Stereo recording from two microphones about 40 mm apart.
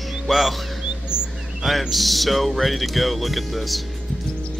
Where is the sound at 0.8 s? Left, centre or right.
Right.